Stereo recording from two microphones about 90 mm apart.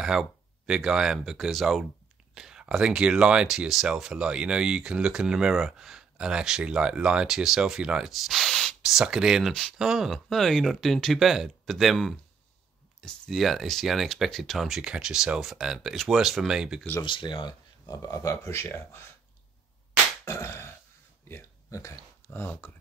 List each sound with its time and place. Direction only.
0.0 s speech: 5° right (ahead or behind)
9.5 s speech: 5° left (ahead or behind)
9.8 s speech: 5° right (ahead or behind)
17.0 s speech: 65° left (ahead or behind)
17.8 s speech: 40° left (ahead or behind)
20.2 s grunt: 30° left (ahead or behind)
21.3 s a sound: 35° left (ahead or behind)
22.3 s speech: 25° left (ahead or behind)